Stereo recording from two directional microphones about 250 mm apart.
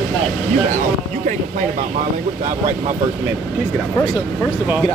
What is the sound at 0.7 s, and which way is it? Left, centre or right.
Speech, right.